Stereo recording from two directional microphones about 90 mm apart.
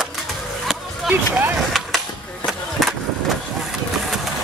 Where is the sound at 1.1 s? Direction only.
20° right (ahead or behind).